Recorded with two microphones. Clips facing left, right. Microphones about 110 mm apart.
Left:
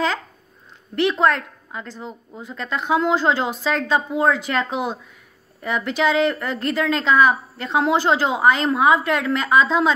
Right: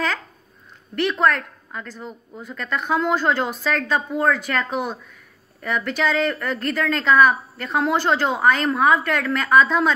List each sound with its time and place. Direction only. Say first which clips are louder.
0.9 s a woman's voice: left 1 dB; 25° left (ahead or behind)